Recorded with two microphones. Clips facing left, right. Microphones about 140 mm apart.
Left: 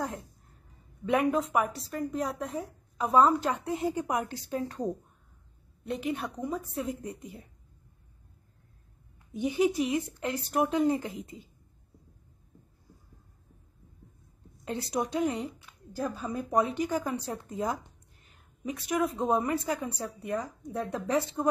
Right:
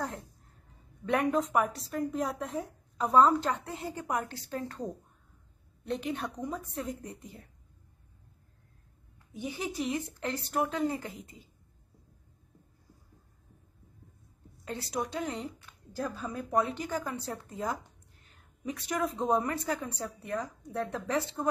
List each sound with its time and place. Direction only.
1.0 s a woman's voice: 5° left (ahead or behind)
9.3 s a woman's voice: 15° left (ahead or behind)
14.6 s a woman's voice: 20° left (ahead or behind)